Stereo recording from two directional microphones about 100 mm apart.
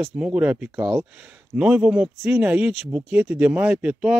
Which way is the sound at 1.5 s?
10° right (ahead or behind).